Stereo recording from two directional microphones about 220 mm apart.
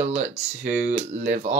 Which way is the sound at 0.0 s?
30° right (ahead or behind).